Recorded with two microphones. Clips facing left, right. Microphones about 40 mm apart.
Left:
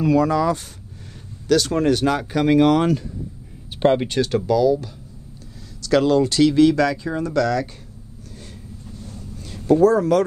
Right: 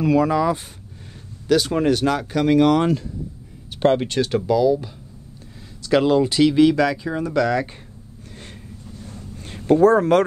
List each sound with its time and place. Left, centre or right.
0.0 s speech: centre
4.5 s speech: centre
9.0 s a sound: right